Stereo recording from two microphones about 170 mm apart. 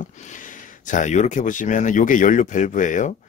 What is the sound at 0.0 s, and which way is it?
Speech, 45° left (ahead or behind).